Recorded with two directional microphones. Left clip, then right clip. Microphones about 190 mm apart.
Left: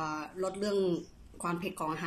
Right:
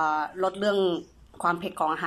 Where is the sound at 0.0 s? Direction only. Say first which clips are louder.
Right 10 dB; 15° left (ahead or behind).